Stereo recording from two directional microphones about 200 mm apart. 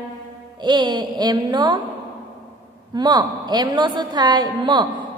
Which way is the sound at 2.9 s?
20° right (ahead or behind).